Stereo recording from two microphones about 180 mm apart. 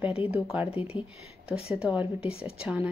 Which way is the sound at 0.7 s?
35° left (ahead or behind).